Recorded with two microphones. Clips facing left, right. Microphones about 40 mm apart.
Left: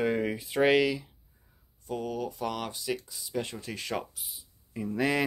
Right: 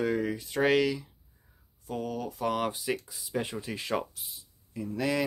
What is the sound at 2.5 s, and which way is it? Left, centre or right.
Speech, centre.